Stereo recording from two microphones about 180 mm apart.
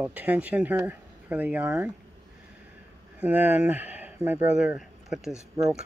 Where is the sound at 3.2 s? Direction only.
10° right (ahead or behind).